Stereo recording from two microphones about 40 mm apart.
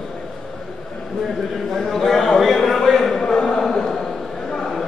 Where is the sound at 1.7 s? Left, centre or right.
Centre.